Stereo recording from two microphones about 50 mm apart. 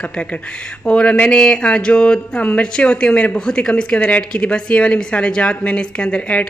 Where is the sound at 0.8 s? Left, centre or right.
Left.